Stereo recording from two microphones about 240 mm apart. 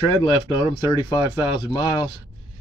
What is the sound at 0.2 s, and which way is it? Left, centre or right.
Speech, left.